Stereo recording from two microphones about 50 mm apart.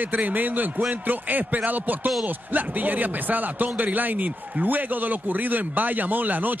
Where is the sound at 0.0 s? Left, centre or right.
Right.